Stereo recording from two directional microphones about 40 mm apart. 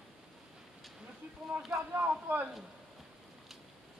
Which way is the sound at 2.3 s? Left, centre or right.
Right.